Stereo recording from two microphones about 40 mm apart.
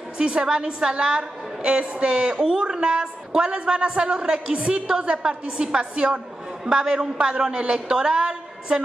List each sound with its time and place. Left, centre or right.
0.2 s a woman's voice: right